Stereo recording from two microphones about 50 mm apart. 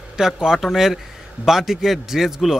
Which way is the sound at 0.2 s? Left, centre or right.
Centre.